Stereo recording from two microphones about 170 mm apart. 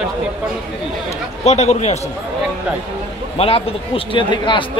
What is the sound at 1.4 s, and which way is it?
Speech, 40° left (ahead or behind).